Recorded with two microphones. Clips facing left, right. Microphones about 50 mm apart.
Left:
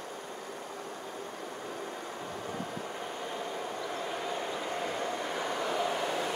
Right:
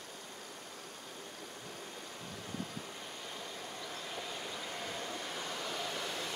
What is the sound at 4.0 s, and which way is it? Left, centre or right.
Train, left.